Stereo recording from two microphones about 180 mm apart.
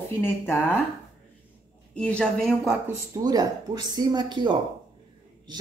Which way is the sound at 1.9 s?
5° left (ahead or behind).